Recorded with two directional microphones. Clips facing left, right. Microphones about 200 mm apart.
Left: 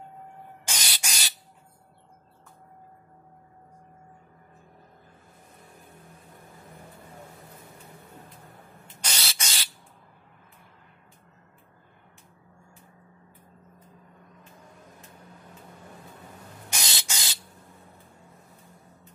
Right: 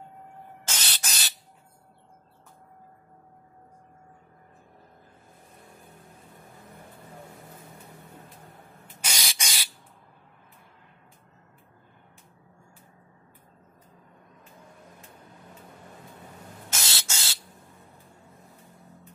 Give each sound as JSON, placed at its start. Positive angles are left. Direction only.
{"t": 0.7, "sound": "spray", "side_deg": 15}
{"t": 9.0, "sound": "spray", "side_deg": -15}
{"t": 16.6, "sound": "spray", "side_deg": 15}